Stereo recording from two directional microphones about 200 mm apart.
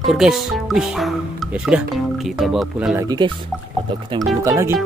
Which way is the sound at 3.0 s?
20° right (ahead or behind).